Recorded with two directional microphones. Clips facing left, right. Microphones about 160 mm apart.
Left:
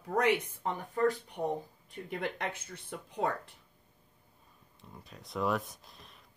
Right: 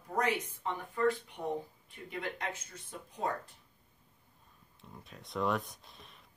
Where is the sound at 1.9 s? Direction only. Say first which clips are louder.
Left 3 dB; 50° left (ahead or behind).